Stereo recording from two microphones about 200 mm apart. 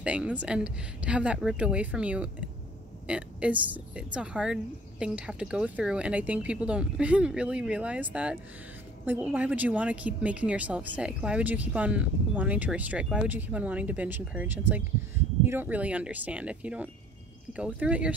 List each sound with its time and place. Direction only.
0.0 s a woman's voice: 5° right (ahead or behind)